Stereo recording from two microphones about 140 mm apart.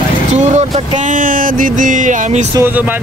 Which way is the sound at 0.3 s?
55° right (ahead or behind).